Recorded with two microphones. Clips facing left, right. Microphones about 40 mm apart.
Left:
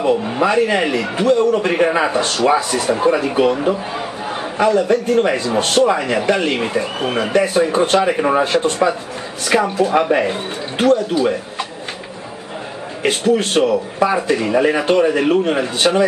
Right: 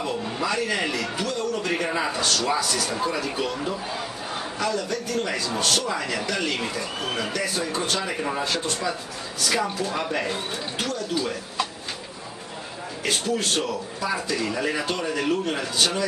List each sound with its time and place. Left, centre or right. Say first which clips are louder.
0.0 s a man's voice: left 11 dB; left
13.0 s a man's voice: left 10 dB; left